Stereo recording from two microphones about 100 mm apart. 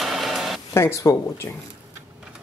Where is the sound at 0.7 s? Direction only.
30° left (ahead or behind).